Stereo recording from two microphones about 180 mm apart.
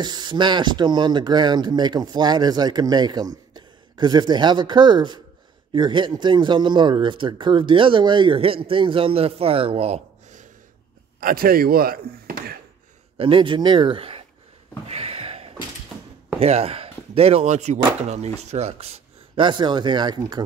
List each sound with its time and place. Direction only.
0.0 s speech: 25° right (ahead or behind)
11.1 s speech: 55° right (ahead or behind)
13.2 s speech: 30° right (ahead or behind)
14.9 s a sound: 35° right (ahead or behind)
16.3 s speech: 35° right (ahead or behind)